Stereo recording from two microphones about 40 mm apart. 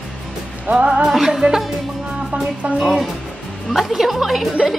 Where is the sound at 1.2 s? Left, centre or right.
Centre.